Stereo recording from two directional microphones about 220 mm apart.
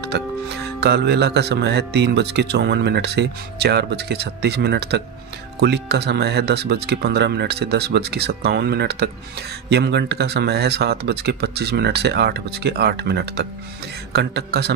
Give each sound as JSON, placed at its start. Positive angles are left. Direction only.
{"t": 0.1, "sound": "speech", "side_deg": -50}